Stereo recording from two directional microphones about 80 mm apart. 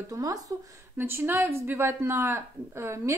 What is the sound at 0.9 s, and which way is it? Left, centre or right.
Speech, right.